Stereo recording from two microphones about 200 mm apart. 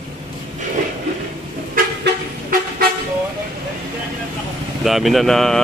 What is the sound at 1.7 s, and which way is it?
Vehicle, 45° right (ahead or behind).